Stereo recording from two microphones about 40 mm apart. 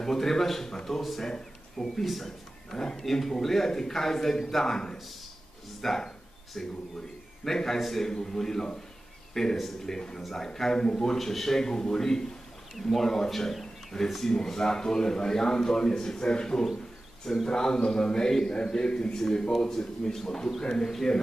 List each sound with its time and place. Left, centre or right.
0.0 s speech: centre
5.8 s a sound: centre
7.4 s a man's voice: centre